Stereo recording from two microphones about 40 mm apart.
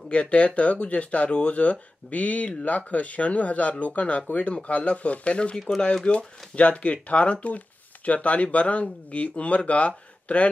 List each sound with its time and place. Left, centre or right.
0.1 s speech: left